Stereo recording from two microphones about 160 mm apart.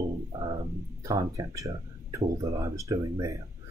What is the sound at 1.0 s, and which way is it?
Speech, 20° right (ahead or behind).